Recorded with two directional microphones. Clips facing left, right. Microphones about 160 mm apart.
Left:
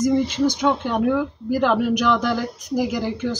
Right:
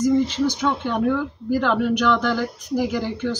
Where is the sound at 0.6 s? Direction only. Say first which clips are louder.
Left 2 dB; 10° left (ahead or behind).